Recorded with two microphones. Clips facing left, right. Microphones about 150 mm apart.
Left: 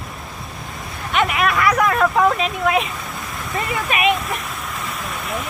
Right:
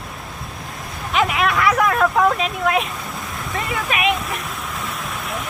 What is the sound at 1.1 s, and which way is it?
Vehicle, centre (ahead or behind).